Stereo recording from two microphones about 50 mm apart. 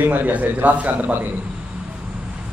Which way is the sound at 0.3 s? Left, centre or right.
Right.